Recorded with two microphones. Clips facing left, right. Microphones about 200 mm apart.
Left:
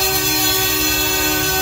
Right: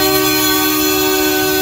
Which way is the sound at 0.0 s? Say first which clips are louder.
Right 8 dB; 65° right (ahead or behind).